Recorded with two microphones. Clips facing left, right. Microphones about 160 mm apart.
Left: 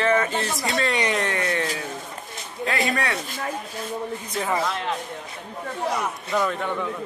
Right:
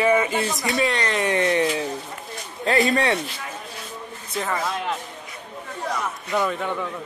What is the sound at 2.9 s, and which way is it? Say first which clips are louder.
Speech: right 5 dB; 25° right (ahead or behind).